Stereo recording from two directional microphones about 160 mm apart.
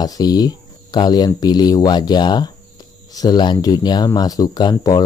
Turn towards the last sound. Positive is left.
turn(degrees=25)  # may be behind; listen again after turning